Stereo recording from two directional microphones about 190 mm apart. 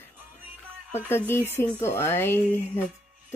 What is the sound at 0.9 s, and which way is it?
Speech, 10° left (ahead or behind).